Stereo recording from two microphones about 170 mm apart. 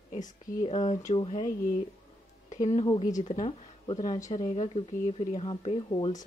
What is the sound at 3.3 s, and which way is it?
Speech, 35° left (ahead or behind).